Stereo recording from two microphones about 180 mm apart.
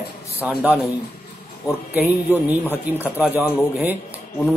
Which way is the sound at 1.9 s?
10° right (ahead or behind).